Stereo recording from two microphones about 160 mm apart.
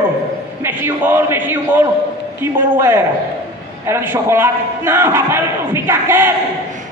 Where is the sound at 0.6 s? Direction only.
15° right (ahead or behind).